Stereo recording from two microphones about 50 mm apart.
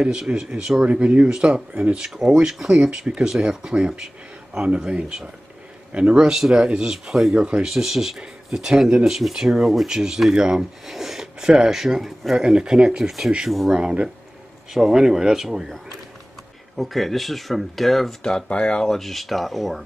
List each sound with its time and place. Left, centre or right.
0.0 s speech: centre
12.4 s speech: centre
16.7 s speech: centre
18.3 s speech: centre
18.9 s speech: centre